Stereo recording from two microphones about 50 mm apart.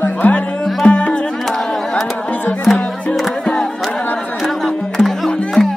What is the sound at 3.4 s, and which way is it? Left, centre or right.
Music, centre.